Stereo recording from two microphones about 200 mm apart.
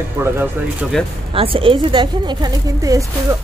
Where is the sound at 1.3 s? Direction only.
25° right (ahead or behind).